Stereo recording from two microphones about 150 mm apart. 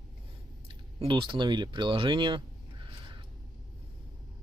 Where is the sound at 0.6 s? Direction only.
35° right (ahead or behind).